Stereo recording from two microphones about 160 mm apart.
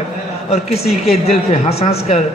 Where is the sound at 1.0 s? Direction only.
40° left (ahead or behind).